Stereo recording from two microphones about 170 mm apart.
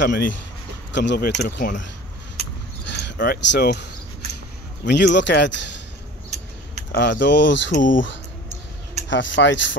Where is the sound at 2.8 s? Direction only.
90° left.